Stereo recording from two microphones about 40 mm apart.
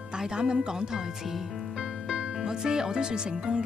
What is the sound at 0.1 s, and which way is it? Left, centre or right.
Speech, right.